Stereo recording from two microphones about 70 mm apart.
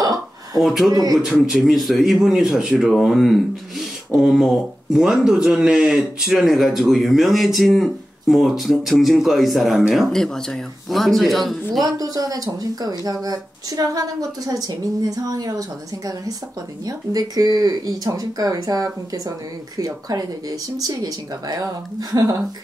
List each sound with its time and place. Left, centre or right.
0.6 s a man's voice: centre
11.8 s speech: right
16.8 s speech: right